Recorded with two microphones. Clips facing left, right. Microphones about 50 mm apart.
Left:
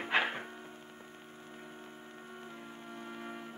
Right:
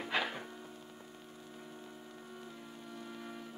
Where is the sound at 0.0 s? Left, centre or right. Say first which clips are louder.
Left 4 dB; left.